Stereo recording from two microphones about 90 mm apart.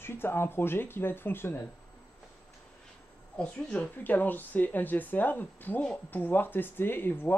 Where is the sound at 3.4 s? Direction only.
15° left (ahead or behind).